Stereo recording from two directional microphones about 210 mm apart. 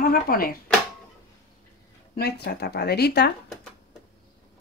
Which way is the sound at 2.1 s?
50° left (ahead or behind).